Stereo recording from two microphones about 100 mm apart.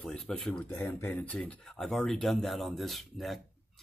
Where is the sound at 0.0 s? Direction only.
5° left (ahead or behind).